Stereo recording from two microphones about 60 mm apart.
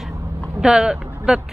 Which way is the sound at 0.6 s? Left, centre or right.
Centre.